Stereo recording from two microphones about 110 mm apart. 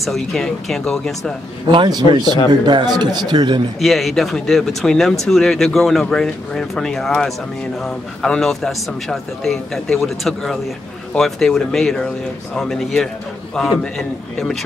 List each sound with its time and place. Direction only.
0.0 s a man's voice: 5° left (ahead or behind)
1.7 s a man's voice: 40° right (ahead or behind)
3.8 s a man's voice: centre (ahead or behind)